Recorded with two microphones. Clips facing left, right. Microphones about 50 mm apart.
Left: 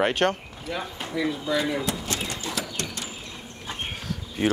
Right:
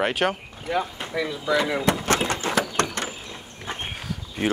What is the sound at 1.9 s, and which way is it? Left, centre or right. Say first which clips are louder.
Horse: right 8 dB; right.